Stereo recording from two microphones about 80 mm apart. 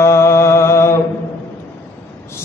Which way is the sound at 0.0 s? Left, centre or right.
Left.